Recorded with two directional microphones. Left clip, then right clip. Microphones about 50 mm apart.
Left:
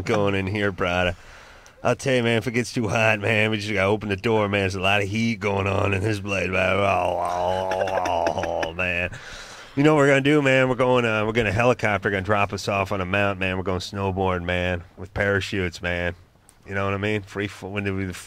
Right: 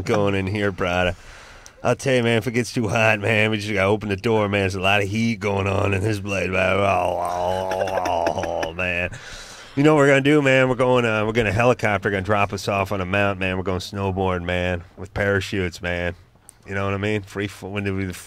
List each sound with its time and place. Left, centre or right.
0.0 s speech: left